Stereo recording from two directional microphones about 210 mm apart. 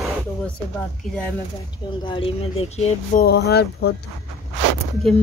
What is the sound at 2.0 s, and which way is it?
Speech, 25° left (ahead or behind).